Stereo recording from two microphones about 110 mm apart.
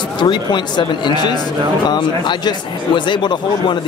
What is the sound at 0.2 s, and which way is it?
Speech, 45° left (ahead or behind).